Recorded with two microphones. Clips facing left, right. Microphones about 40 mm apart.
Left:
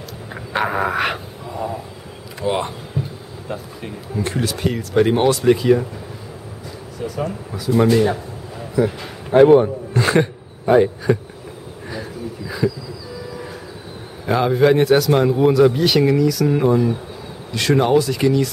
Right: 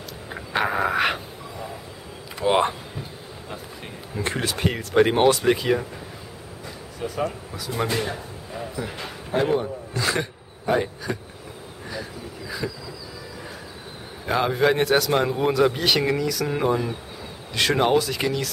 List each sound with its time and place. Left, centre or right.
0.3 s a sound: centre
2.4 s speech: right
4.2 s speech: centre
7.0 s a man's voice: centre
9.3 s a sound: left
10.7 s speech: centre
11.9 s insect: centre
14.2 s a man's voice: centre